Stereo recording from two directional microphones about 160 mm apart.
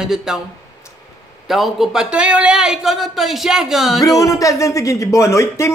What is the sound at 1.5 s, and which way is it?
Speech, centre (ahead or behind).